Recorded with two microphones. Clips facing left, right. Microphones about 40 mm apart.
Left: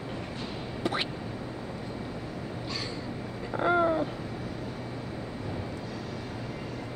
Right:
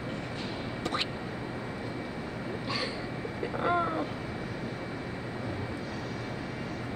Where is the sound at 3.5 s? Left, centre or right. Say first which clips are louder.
Left 4 dB; centre.